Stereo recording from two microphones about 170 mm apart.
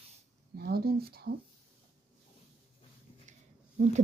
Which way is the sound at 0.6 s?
65° right (ahead or behind).